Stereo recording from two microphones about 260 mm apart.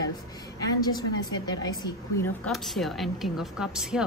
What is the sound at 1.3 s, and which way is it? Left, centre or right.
Speech, centre.